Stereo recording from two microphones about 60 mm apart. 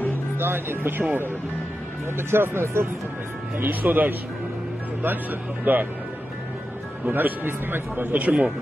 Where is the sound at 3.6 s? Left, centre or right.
Right.